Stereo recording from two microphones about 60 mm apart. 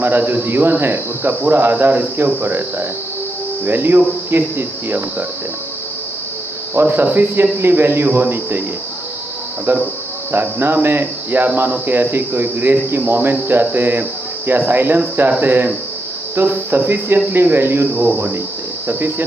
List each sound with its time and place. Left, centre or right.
0.0 s speech: right
6.7 s speech: right
9.7 s speech: right